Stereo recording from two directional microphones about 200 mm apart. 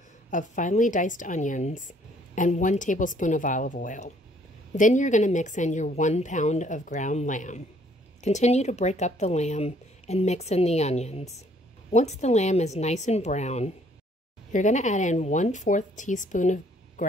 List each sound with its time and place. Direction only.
0.3 s speech: 40° left (ahead or behind)